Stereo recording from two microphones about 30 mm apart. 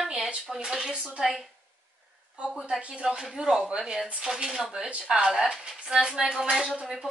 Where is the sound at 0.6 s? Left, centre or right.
Right.